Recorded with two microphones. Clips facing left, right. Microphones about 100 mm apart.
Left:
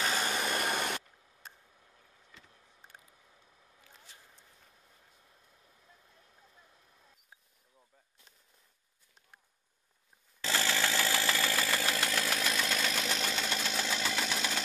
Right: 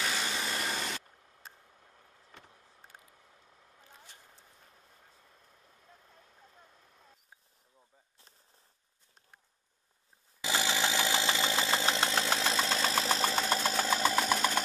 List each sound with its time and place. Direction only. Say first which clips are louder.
0.0 s engine: left 2 dB; 45° left (ahead or behind)
2.3 s vehicle: right 4 dB; 55° right (ahead or behind)
10.4 s engine: right 1 dB; 15° right (ahead or behind); by 14.6 s 45° right (ahead or behind)